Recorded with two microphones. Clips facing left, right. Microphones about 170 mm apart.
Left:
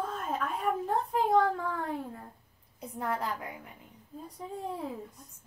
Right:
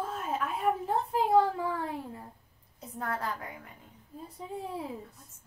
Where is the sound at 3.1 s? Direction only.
15° left (ahead or behind).